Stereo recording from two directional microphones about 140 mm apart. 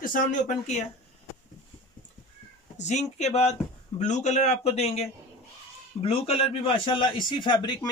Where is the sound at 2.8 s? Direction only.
55° left (ahead or behind).